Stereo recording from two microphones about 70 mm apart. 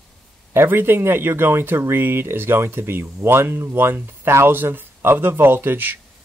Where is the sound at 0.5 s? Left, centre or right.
Right.